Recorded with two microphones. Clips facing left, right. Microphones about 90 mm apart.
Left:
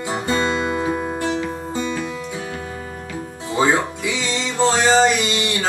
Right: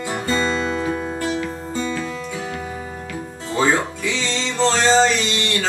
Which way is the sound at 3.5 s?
15° left (ahead or behind).